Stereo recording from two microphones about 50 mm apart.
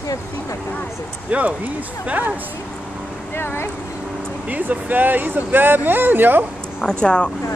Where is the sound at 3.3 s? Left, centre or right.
Left.